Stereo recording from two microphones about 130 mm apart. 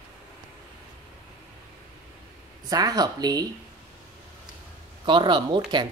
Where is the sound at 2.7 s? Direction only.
30° right (ahead or behind).